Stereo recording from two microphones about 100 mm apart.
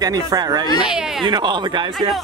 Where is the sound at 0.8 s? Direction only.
5° right (ahead or behind).